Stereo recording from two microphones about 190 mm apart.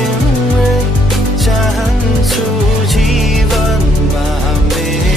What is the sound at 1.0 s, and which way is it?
Music, centre (ahead or behind).